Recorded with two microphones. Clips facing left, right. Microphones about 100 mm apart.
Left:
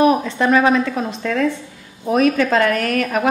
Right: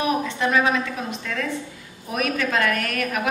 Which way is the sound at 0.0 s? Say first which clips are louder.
Left 8 dB; 40° left (ahead or behind).